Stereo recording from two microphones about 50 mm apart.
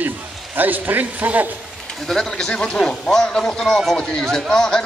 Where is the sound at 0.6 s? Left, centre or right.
Right.